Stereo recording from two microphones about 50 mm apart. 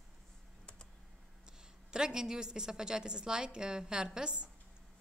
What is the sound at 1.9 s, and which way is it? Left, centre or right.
A woman's voice, centre.